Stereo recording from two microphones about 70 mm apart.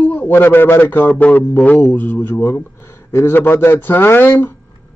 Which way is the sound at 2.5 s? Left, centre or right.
Left.